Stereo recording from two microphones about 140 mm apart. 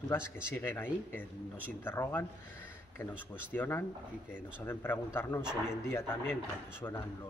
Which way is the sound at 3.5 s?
15° left (ahead or behind).